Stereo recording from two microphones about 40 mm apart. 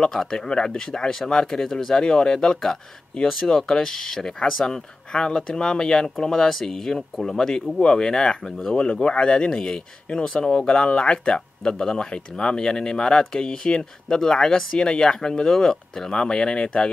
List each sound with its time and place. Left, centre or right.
0.1 s speech: centre
9.0 s speech: left